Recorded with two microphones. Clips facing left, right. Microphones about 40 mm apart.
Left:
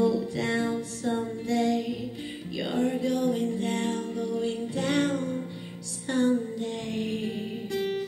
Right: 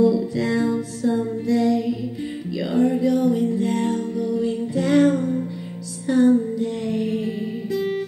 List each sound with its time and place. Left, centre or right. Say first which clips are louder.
0.0 s music: right 7 dB; left
2.9 s a sound: right 7 dB; left
3.5 s music: right 7 dB; left
5.0 s music: right 9 dB; right
6.0 s music: right 8 dB; left